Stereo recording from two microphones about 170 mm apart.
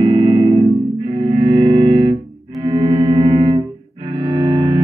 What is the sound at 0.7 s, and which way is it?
Music, 35° right (ahead or behind).